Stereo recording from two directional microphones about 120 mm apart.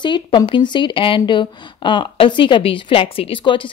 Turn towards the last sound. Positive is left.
turn(degrees=45)  # may be behind; listen again after turning